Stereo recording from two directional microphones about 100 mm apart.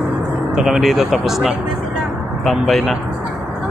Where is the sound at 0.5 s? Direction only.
5° right (ahead or behind).